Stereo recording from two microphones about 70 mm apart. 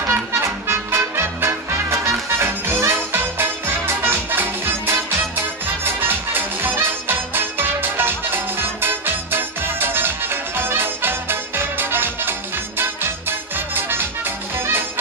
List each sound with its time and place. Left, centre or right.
0.0 s music: right